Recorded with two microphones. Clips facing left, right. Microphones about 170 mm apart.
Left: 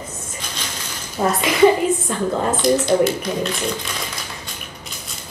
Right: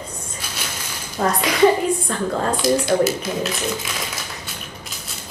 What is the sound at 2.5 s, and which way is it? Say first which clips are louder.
Speech: left 1 dB; 10° right (ahead or behind).